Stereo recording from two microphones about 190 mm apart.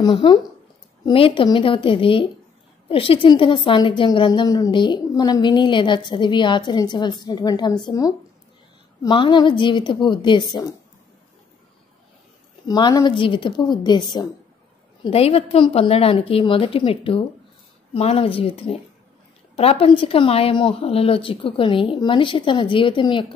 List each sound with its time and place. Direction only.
0.0 s a woman's voice: 25° left (ahead or behind)
12.6 s a woman's voice: 20° left (ahead or behind)
15.0 s a woman's voice: 30° left (ahead or behind)